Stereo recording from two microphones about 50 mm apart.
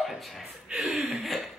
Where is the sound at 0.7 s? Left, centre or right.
Centre.